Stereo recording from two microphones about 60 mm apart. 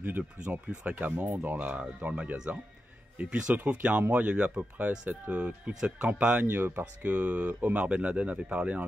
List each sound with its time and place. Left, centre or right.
0.0 s speech: right
1.6 s speech: right
6.4 s speech: right